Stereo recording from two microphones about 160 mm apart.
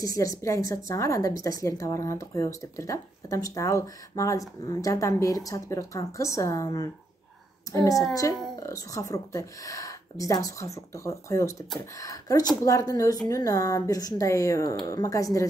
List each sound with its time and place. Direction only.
0.0 s a woman's voice: 20° left (ahead or behind)